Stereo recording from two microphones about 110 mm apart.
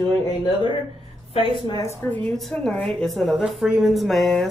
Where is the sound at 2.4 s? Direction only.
Centre (ahead or behind).